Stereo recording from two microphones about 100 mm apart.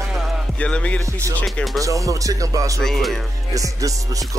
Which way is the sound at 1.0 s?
30° right (ahead or behind).